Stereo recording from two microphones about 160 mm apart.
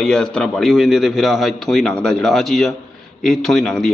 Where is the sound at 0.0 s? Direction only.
5° left (ahead or behind).